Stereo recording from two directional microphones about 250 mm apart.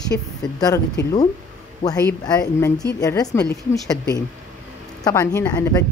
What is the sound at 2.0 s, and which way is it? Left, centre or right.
Speech, centre.